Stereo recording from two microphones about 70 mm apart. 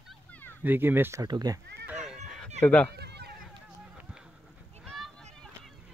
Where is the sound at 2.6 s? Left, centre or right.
Left.